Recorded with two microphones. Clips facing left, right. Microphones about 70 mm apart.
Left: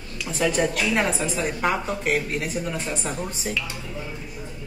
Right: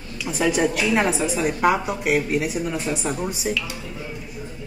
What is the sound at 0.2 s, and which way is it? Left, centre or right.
A woman's voice, centre.